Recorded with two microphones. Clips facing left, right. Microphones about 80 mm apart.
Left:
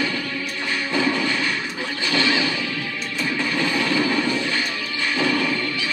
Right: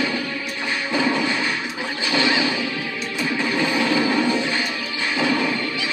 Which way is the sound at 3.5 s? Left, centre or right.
Centre.